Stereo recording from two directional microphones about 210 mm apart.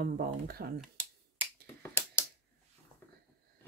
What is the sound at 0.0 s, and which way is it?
Speech, 45° right (ahead or behind).